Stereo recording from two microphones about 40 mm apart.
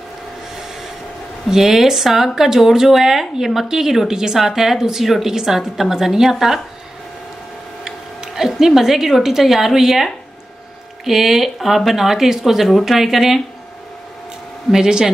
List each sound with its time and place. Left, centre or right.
1.5 s speech: centre
7.8 s speech: centre
11.1 s speech: centre
14.7 s speech: centre